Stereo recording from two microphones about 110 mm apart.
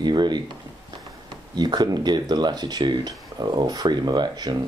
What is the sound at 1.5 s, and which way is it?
Speech, 40° right (ahead or behind).